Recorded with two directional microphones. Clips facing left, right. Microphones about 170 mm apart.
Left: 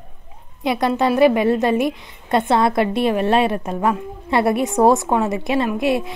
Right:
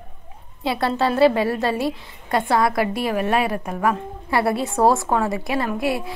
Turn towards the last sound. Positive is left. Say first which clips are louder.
# left 4 dB
turn(degrees=20)  # may be behind; listen again after turning